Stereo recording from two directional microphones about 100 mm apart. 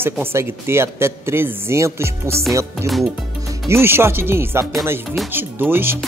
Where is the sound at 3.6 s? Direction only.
25° right (ahead or behind).